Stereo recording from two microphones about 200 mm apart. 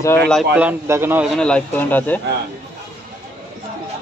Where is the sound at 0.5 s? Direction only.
10° right (ahead or behind).